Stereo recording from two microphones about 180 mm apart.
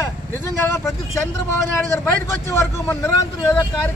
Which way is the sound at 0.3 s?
15° left (ahead or behind).